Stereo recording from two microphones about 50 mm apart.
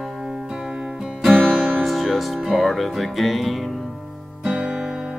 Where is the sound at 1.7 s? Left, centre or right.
Centre.